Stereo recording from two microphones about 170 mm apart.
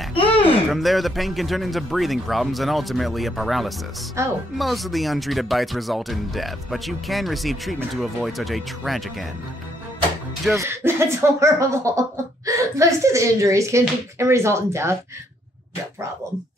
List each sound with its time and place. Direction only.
0.1 s a sound: 30° left (ahead or behind)
0.7 s speech: centre (ahead or behind)
4.2 s speech: 15° right (ahead or behind)
4.6 s speech: centre (ahead or behind)
10.5 s speech: 15° right (ahead or behind)